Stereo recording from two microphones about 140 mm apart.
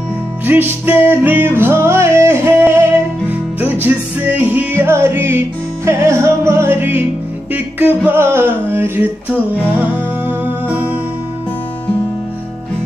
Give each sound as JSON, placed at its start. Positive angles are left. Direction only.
{"t": 0.5, "sound": "music", "side_deg": -15}